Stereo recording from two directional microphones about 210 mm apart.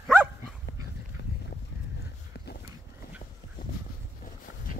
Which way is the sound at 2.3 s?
50° left (ahead or behind).